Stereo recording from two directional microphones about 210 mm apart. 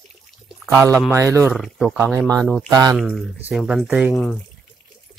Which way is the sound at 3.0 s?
Centre (ahead or behind).